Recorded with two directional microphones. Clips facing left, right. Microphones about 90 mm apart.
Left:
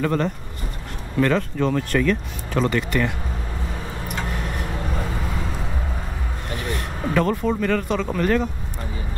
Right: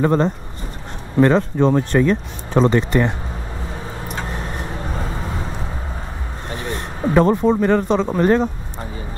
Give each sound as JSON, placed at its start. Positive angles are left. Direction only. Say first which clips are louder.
{"t": 0.0, "sound": "speech", "louder": "right 5 dB", "side_deg": -30}
{"t": 4.1, "sound": "vehicle", "louder": "right 1 dB", "side_deg": -30}
{"t": 6.5, "sound": "speech", "louder": "right 1 dB", "side_deg": -30}